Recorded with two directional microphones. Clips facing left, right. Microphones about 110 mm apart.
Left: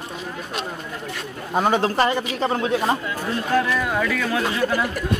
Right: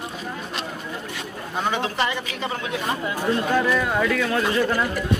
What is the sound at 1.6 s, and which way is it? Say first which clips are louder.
A man's voice: left 5 dB; 40° left (ahead or behind).